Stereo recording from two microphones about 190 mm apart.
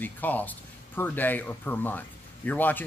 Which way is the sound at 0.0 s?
10° left (ahead or behind).